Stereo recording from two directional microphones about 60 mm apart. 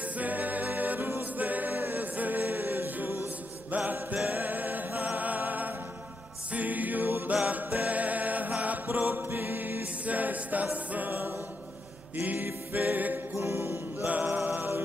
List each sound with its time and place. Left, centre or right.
0.0 s a capella: right
3.7 s music: right
13.4 s music: right
14.0 s music: right